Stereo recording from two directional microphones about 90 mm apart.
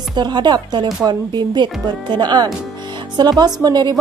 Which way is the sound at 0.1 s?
55° right (ahead or behind).